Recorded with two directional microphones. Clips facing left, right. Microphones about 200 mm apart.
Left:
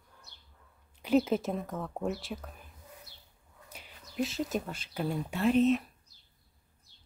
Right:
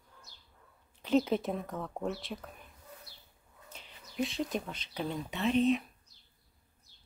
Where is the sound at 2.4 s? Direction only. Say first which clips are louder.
Left 1 dB; centre (ahead or behind).